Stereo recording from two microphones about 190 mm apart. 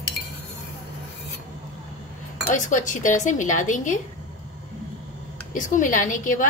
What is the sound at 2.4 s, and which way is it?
A woman's voice, 40° left (ahead or behind).